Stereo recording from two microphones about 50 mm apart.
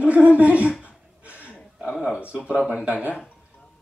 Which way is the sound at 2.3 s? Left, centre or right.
Right.